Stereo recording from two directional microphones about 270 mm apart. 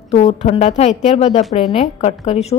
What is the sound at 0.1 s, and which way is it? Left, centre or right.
A woman's voice, left.